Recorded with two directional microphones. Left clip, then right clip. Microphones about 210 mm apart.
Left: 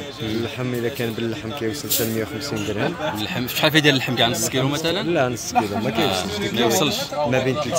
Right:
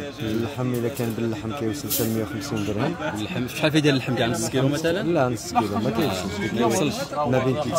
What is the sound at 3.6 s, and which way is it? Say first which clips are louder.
Speech: left 4 dB; centre (ahead or behind).